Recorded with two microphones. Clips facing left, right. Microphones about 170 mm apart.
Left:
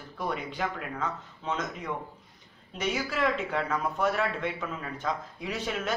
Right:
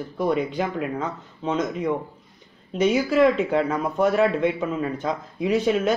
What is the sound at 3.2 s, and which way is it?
A man's voice, 20° right (ahead or behind).